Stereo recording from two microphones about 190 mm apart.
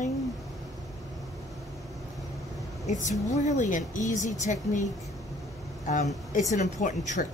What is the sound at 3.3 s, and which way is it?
Speech, 40° left (ahead or behind).